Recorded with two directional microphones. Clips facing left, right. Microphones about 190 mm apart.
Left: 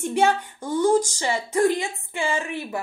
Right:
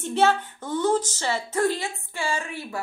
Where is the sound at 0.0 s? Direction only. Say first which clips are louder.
Left 1 dB; 15° left (ahead or behind).